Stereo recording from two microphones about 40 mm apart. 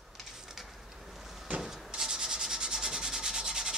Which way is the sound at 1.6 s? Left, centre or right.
Centre.